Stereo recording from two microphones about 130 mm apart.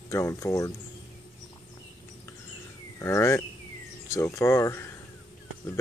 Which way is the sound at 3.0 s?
20° left (ahead or behind).